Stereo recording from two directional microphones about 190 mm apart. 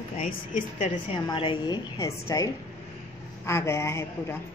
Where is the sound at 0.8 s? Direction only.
30° left (ahead or behind).